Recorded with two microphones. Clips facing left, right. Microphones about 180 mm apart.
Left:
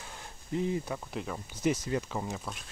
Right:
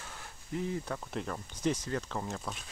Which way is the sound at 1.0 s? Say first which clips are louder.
Even; 5° left (ahead or behind).